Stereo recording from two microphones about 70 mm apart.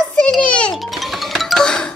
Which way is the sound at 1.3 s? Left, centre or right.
Centre.